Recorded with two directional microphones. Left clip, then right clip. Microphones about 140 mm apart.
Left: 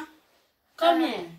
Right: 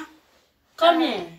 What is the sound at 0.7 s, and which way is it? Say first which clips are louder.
Speech: right 4 dB; 25° right (ahead or behind).